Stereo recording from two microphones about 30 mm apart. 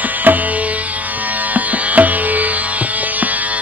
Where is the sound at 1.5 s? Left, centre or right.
Right.